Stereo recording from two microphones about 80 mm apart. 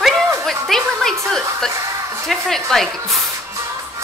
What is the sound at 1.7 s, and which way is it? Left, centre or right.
Speech, right.